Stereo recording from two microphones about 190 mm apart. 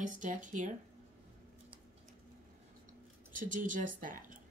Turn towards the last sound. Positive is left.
turn(degrees=-45)  # may be behind; listen again after turning